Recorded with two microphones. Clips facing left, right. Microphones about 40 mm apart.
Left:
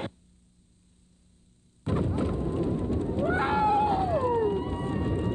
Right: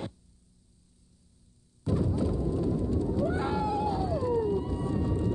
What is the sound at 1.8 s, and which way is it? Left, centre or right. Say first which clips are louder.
Explosion: left 1 dB; left.